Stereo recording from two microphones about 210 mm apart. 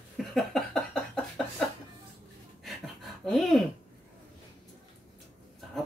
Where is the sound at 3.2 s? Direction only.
Centre (ahead or behind).